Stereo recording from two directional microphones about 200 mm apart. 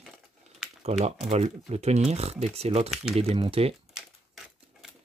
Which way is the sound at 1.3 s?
35° right (ahead or behind).